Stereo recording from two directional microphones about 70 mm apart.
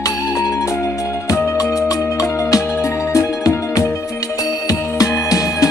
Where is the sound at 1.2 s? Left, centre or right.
Left.